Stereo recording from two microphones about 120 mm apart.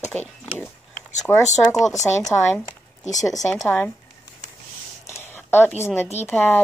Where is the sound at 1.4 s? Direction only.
75° left (ahead or behind).